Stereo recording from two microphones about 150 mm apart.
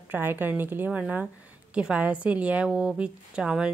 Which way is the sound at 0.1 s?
15° right (ahead or behind).